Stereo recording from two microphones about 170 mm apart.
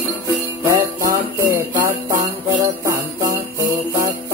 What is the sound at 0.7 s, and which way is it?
Jingle bell, 20° right (ahead or behind).